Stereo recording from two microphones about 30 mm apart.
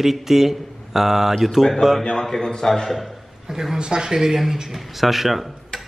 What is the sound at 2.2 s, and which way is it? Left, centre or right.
Speech, centre.